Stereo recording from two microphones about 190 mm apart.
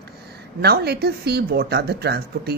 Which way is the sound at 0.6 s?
60° right (ahead or behind).